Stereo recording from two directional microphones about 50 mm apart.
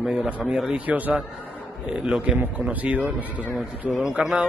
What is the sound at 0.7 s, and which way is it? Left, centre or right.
Speech, right.